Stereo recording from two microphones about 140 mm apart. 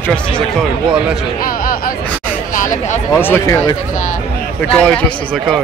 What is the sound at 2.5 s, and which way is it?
Speech, 70° left (ahead or behind).